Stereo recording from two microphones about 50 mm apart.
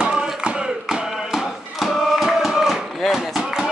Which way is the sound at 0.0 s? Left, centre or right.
Centre.